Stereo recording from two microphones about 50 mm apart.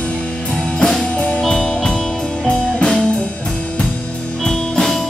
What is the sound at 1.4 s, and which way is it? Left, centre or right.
Music, centre.